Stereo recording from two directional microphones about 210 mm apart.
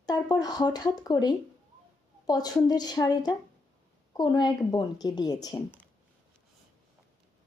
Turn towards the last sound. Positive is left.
turn(degrees=20)  # may be behind; listen again after turning